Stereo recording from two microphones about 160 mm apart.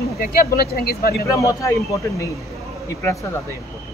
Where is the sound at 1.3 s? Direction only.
20° left (ahead or behind).